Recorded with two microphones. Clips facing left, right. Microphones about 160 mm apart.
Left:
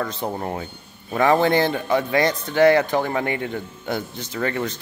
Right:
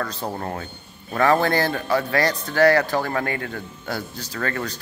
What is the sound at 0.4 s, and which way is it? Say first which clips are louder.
A man's voice: left 2 dB; 15° left (ahead or behind).